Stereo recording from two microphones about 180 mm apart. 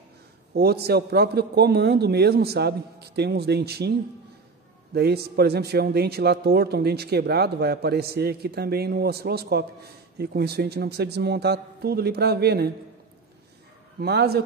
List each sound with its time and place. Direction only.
0.6 s a man's voice: 60° right (ahead or behind)
4.9 s a man's voice: 60° right (ahead or behind)
13.9 s a man's voice: 60° right (ahead or behind)